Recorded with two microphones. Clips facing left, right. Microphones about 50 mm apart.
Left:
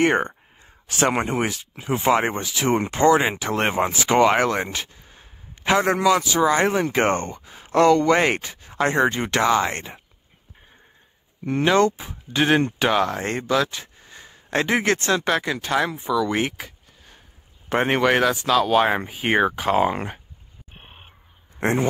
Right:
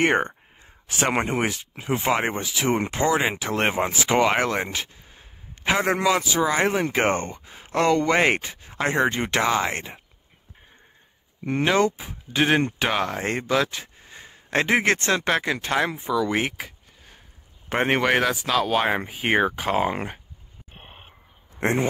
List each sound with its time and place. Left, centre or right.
0.0 s speech: centre
1.5 s speech: right
1.9 s speech: centre
3.2 s a man's voice: centre
6.4 s speech: centre
11.4 s speech: centre
16.3 s speech: centre
17.7 s speech: centre
18.7 s speech: centre